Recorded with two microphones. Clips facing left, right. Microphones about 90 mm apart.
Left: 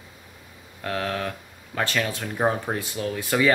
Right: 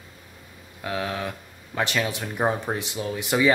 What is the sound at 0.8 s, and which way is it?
Speech, 15° right (ahead or behind).